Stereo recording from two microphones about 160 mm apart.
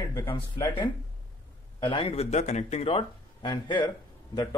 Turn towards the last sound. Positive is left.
turn(degrees=25)  # may be behind; listen again after turning